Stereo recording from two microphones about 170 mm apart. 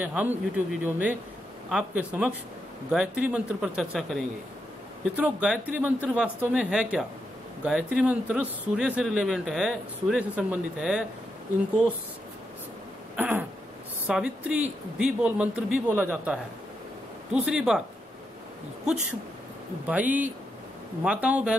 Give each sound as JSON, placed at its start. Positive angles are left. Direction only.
{"t": 0.0, "sound": "a man's voice", "side_deg": -10}
{"t": 13.1, "sound": "throat clearing", "side_deg": -10}
{"t": 14.0, "sound": "a man's voice", "side_deg": -5}
{"t": 19.9, "sound": "a man's voice", "side_deg": -10}